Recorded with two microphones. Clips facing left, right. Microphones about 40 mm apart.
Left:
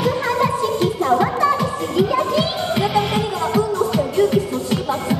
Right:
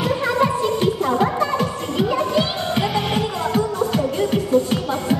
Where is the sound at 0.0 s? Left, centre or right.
Centre.